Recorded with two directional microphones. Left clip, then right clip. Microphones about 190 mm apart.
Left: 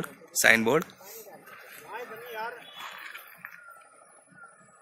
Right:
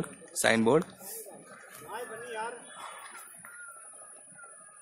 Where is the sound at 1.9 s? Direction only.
20° left (ahead or behind).